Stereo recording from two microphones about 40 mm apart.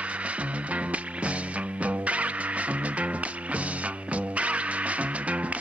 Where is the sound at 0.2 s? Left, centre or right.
Right.